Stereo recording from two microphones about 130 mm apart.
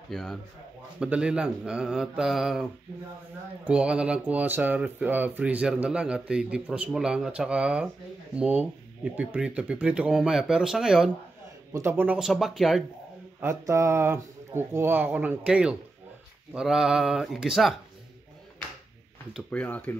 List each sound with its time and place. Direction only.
0.1 s speech: centre (ahead or behind)
11.7 s speech: 20° right (ahead or behind)
12.2 s speech: centre (ahead or behind)
13.4 s speech: 20° right (ahead or behind); by 17.7 s centre (ahead or behind)
19.5 s speech: 10° left (ahead or behind)